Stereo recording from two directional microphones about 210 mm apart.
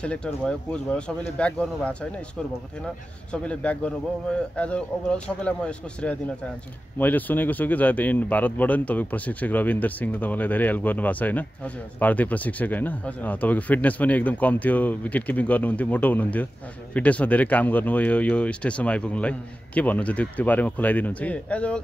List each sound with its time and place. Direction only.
0.0 s speech: 5° left (ahead or behind)
3.3 s speech: 5° left (ahead or behind)